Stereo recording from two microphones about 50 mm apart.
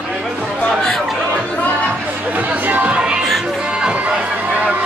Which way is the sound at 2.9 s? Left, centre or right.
Right.